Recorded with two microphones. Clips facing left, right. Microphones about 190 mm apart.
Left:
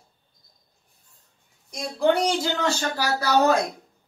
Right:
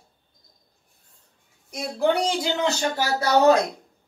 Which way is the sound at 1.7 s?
10° right (ahead or behind).